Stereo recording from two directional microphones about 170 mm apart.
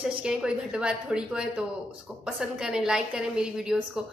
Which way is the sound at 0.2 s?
5° right (ahead or behind).